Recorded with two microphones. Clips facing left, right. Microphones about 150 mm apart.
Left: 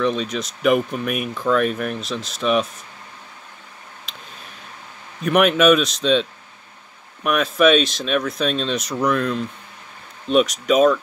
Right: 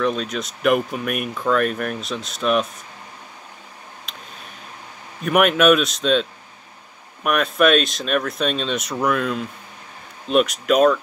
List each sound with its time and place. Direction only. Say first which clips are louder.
0.0 s speech: left 1 dB; centre (ahead or behind)
4.1 s a sound: even; centre (ahead or behind)
5.2 s speech: left 1 dB; centre (ahead or behind)
7.2 s speech: left 1 dB; centre (ahead or behind)